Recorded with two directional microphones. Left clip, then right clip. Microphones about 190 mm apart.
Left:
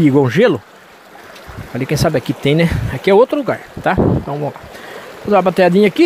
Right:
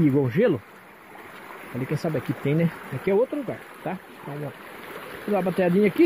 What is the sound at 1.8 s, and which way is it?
Speech, 30° left (ahead or behind).